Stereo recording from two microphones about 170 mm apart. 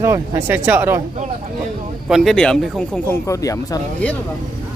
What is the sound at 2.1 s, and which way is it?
Speech, centre (ahead or behind).